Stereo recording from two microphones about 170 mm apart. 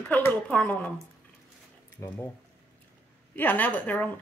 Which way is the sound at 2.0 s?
10° left (ahead or behind).